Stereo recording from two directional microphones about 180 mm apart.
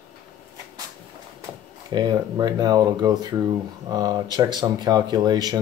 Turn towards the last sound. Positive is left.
turn(degrees=-20)  # may be behind; listen again after turning